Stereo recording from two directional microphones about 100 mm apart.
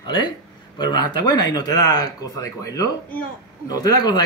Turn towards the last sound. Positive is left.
turn(degrees=45)  # may be behind; listen again after turning